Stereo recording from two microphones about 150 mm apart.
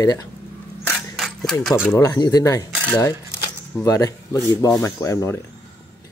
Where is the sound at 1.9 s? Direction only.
20° left (ahead or behind).